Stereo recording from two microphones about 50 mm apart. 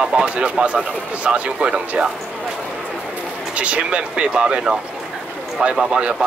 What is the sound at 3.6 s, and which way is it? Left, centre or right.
A man's voice, right.